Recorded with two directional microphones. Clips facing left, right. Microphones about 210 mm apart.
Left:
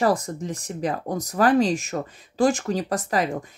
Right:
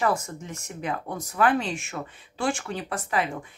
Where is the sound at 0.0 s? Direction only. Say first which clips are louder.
Left 4 dB; 35° left (ahead or behind).